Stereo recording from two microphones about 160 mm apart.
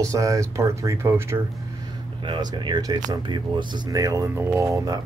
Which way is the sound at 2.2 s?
30° right (ahead or behind).